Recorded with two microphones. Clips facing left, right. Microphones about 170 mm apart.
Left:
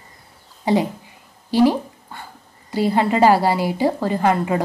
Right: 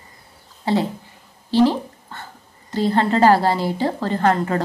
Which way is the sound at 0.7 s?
15° left (ahead or behind).